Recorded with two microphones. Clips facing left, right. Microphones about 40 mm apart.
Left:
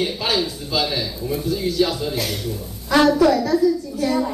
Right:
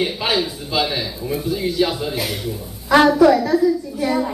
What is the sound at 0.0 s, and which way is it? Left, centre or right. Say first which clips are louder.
A woman's voice: right 1 dB; centre.